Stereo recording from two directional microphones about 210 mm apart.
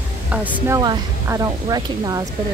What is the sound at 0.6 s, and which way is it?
A woman's voice, 15° right (ahead or behind).